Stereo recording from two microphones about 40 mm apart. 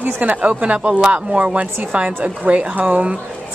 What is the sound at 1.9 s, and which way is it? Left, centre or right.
A woman's voice, right.